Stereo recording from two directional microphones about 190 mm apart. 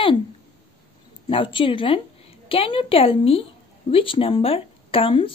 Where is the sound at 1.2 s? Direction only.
25° left (ahead or behind).